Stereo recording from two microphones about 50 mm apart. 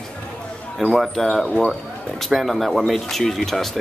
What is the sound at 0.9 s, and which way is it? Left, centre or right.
Speech, centre.